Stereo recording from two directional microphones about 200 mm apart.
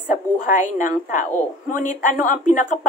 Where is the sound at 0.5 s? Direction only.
40° left (ahead or behind).